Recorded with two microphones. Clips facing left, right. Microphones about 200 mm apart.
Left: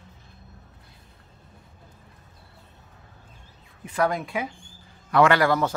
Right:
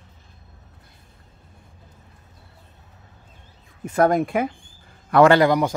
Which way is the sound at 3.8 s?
45° right (ahead or behind).